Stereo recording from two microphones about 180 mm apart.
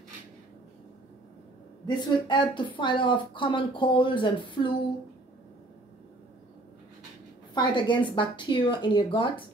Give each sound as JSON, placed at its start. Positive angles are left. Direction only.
{"t": 2.0, "sound": "speech", "side_deg": 25}
{"t": 7.5, "sound": "speech", "side_deg": 25}